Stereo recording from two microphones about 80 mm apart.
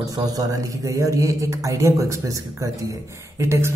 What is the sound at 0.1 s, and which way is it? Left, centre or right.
Speech, right.